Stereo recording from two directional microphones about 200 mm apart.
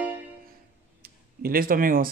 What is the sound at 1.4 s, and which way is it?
Speech, 45° right (ahead or behind).